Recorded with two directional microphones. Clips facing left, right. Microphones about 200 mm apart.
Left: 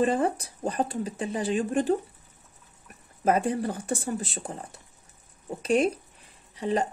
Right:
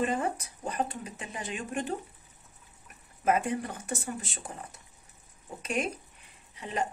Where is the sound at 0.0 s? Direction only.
30° left (ahead or behind).